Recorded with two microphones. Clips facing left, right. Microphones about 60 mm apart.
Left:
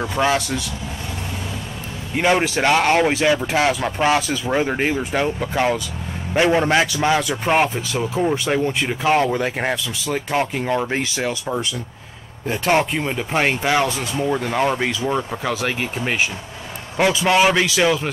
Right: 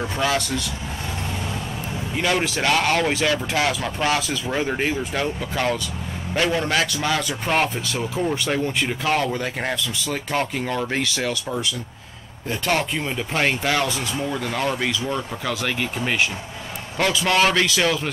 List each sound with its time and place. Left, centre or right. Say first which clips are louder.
0.0 s speech: left 3 dB; left
2.1 s speech: left 5 dB; left
7.2 s speech: left 4 dB; centre